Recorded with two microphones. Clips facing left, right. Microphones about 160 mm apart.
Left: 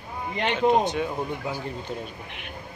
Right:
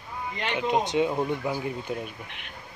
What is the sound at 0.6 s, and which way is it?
Speech, 20° right (ahead or behind).